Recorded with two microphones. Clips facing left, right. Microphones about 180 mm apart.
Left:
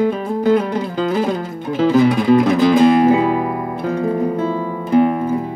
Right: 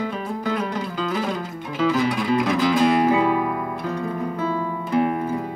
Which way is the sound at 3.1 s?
30° left (ahead or behind).